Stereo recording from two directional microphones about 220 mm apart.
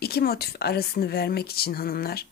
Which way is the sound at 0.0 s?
45° left (ahead or behind).